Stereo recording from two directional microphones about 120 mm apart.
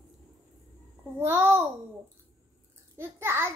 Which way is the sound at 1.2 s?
20° right (ahead or behind).